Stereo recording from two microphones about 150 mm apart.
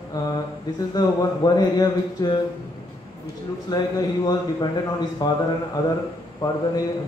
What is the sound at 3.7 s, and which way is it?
A man's voice, 25° left (ahead or behind).